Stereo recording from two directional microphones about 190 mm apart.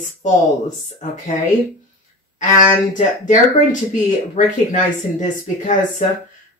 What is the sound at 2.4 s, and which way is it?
Speech, 40° left (ahead or behind).